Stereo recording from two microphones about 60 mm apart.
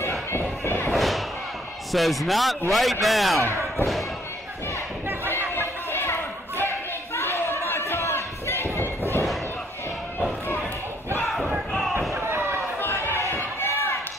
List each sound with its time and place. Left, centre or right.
0.3 s crowd: left
0.9 s slam: centre
1.9 s a man's voice: centre
5.9 s a sound: left
8.7 s slam: left
11.2 s battle cry: centre
12.2 s basketball bounce: right
12.8 s a sound: left
13.6 s basketball bounce: left